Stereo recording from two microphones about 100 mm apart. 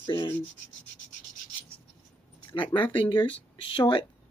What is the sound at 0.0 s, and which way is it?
Rub, 55° left (ahead or behind).